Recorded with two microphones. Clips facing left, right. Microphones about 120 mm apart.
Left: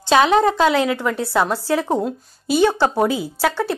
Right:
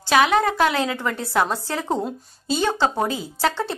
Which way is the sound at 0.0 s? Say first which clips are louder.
Left 3 dB; 25° left (ahead or behind).